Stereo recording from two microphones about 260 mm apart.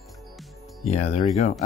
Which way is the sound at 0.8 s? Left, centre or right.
Left.